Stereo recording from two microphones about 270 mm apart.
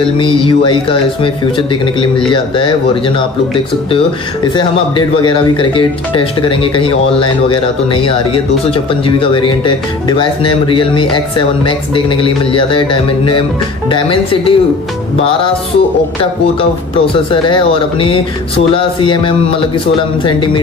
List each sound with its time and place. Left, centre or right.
0.2 s speech: centre
4.6 s speech: centre
16.9 s speech: centre